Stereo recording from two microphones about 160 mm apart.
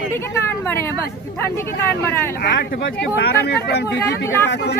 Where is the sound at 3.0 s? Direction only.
90° left.